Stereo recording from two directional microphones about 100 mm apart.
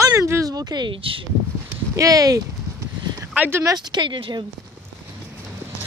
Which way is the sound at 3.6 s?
40° right (ahead or behind).